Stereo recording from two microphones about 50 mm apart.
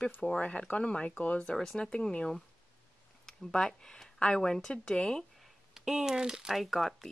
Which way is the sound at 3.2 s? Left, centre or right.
Centre.